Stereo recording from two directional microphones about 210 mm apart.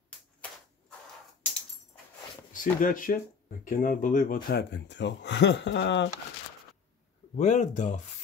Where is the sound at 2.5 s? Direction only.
40° left (ahead or behind); by 6.0 s 55° left (ahead or behind).